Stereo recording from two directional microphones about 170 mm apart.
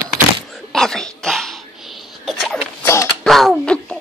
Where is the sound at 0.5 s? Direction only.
Centre (ahead or behind).